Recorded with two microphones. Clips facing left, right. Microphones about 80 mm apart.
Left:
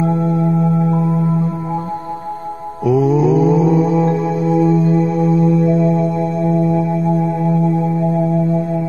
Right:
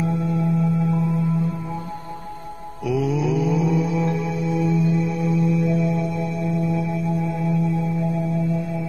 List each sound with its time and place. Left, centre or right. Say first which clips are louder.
0.0 s singing bowl: left 7 dB; left
2.9 s mantra: left 9 dB; left
7.6 s music: left 7 dB; left